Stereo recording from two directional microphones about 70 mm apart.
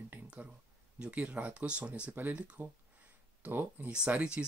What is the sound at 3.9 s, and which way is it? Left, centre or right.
Speech, centre.